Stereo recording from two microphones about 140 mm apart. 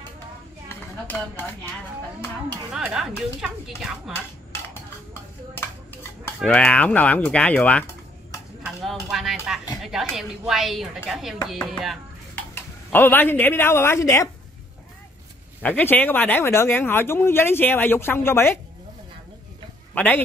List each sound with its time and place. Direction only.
1.0 s speech: 15° left (ahead or behind)
2.7 s speech: 5° right (ahead or behind)
6.4 s speech: 10° left (ahead or behind)
8.6 s speech: centre (ahead or behind)
12.9 s speech: 15° left (ahead or behind)
15.6 s speech: 10° left (ahead or behind)
19.9 s a man's voice: 10° left (ahead or behind)